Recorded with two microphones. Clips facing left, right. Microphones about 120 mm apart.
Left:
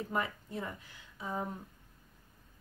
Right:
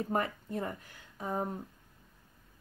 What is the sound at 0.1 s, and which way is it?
Speech, 45° right (ahead or behind).